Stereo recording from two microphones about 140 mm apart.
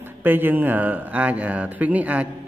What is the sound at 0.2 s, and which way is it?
Speech, 15° right (ahead or behind).